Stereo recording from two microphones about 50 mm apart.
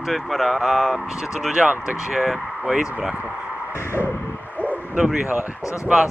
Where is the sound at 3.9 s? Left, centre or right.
Left.